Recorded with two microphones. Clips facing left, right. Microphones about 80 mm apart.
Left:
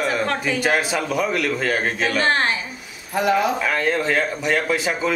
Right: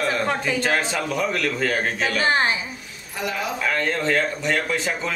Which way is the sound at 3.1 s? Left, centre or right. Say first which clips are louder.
Left 9 dB; left.